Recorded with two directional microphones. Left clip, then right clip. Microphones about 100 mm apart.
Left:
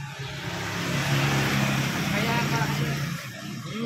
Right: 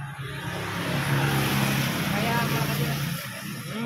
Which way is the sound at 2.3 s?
30° right (ahead or behind).